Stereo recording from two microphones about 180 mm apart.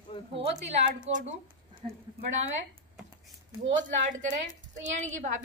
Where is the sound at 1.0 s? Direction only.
45° right (ahead or behind).